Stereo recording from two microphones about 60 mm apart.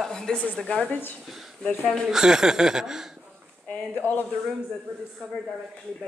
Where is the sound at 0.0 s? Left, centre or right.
Centre.